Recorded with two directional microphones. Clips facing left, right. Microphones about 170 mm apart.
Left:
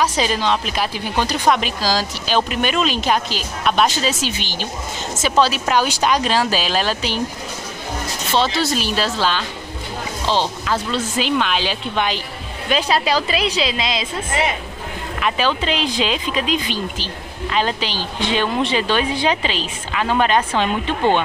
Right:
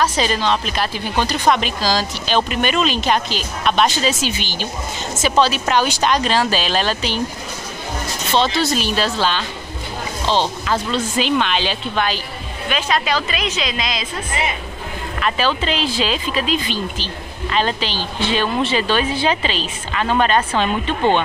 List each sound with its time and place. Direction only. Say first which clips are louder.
0.0 s speech: even; 10° left (ahead or behind)
8.3 s speech: right 1 dB; 5° left (ahead or behind)
11.9 s speech: even; 20° left (ahead or behind)
12.6 s a woman's voice: left 2 dB; 35° left (ahead or behind)
15.1 s speech: even; 10° left (ahead or behind)